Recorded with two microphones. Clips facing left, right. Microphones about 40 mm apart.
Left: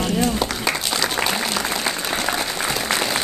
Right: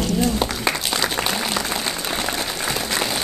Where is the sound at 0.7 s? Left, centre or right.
Centre.